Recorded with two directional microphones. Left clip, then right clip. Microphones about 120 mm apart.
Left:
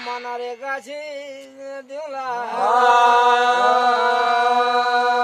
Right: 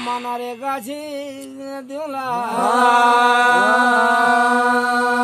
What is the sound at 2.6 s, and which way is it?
Chant, 65° left (ahead or behind).